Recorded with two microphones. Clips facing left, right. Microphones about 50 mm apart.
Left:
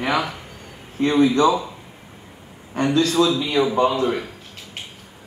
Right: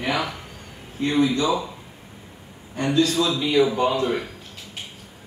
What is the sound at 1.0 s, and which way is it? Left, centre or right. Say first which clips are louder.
Speech: left 4 dB; left.